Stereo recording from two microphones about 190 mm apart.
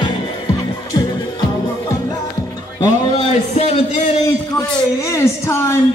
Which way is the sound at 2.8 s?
20° left (ahead or behind).